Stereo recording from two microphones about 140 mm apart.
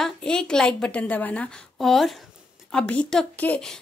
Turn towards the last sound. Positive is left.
turn(degrees=10)  # may be behind; listen again after turning